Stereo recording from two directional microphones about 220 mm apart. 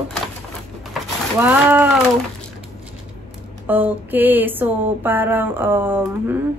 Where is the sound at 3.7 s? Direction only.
10° right (ahead or behind).